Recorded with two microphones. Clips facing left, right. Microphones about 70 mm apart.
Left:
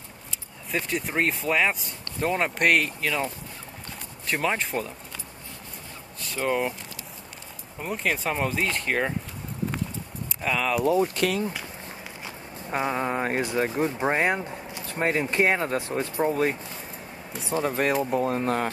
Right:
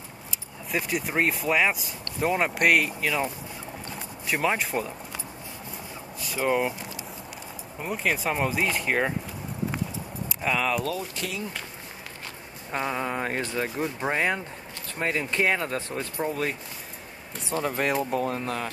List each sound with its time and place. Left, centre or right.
0.7 s speech: centre
4.3 s speech: centre
6.2 s speech: centre
7.8 s speech: centre
10.4 s speech: centre
11.1 s speech: left
12.7 s speech: centre
17.3 s speech: centre
18.4 s speech: left